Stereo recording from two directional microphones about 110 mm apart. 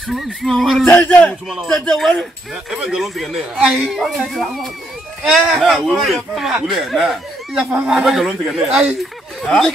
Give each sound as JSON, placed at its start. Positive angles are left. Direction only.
{"t": 0.1, "sound": "speech", "side_deg": 0}
{"t": 0.8, "sound": "speech", "side_deg": 15}
{"t": 1.5, "sound": "speech", "side_deg": 0}
{"t": 9.4, "sound": "speech", "side_deg": 5}